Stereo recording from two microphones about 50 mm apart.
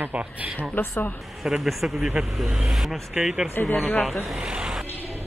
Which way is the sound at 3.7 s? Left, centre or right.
Left.